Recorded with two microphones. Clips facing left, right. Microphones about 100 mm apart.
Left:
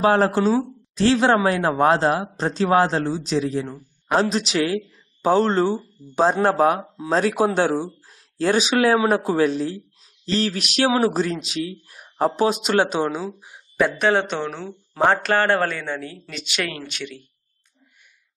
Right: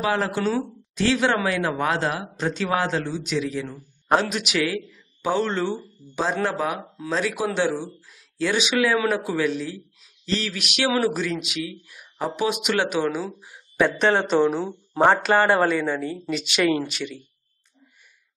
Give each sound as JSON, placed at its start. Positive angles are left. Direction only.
{"t": 0.0, "sound": "speech", "side_deg": 40}
{"t": 13.8, "sound": "speech", "side_deg": 5}